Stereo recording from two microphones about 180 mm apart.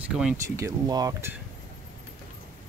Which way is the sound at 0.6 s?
20° right (ahead or behind).